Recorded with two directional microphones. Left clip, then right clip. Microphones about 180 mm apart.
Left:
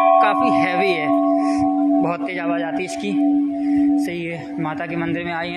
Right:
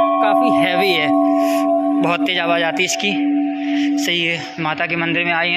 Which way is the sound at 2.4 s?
10° right (ahead or behind).